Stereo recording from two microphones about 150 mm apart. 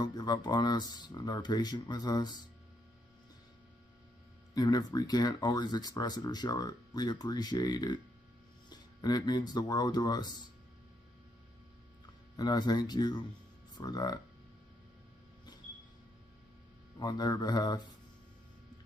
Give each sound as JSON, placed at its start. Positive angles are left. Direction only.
{"t": 0.0, "sound": "speech", "side_deg": 25}
{"t": 4.6, "sound": "speech", "side_deg": 25}
{"t": 12.4, "sound": "speech", "side_deg": 25}
{"t": 17.0, "sound": "speech", "side_deg": 25}